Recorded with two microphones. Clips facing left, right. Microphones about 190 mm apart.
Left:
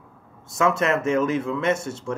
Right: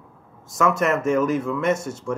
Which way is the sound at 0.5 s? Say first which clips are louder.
Right 1 dB; 30° left (ahead or behind).